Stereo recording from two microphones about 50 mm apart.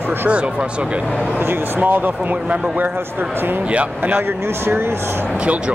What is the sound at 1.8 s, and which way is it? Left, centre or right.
Speech, right.